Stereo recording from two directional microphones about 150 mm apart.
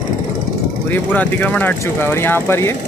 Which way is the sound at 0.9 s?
10° left (ahead or behind).